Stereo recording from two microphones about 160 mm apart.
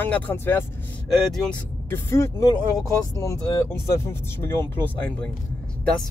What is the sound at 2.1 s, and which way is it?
Speech, 20° left (ahead or behind).